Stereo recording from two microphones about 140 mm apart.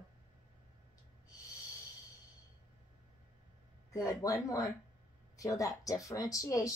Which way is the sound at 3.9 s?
25° left (ahead or behind).